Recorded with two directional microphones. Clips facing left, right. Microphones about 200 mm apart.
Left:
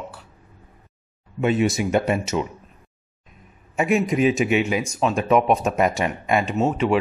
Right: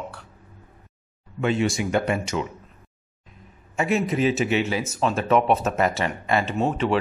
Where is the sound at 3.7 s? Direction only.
15° left (ahead or behind).